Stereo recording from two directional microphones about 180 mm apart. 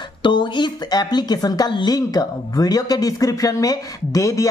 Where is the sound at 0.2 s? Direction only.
25° left (ahead or behind).